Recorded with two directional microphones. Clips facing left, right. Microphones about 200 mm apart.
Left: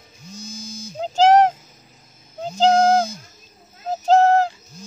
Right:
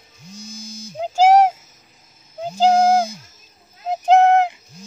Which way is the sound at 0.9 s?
10° right (ahead or behind).